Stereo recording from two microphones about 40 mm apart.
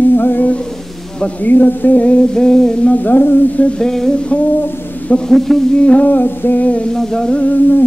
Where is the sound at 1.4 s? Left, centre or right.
Left.